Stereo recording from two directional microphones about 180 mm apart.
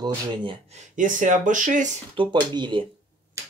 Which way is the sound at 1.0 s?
45° right (ahead or behind).